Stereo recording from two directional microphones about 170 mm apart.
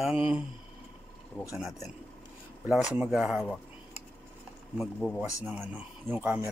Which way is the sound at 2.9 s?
5° right (ahead or behind).